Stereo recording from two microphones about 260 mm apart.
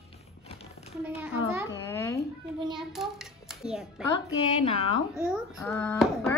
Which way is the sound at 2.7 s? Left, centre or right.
Centre.